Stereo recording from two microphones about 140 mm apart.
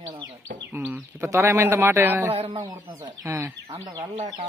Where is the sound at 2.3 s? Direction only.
50° right (ahead or behind).